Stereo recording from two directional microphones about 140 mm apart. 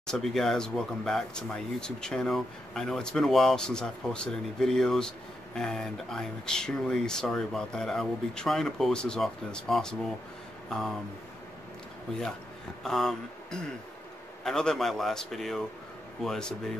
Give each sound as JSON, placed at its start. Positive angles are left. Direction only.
{"t": 0.0, "sound": "speech", "side_deg": 5}
{"t": 12.8, "sound": "speech", "side_deg": 5}